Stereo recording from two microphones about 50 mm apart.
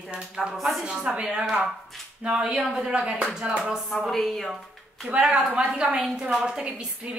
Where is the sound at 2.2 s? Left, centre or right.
Centre.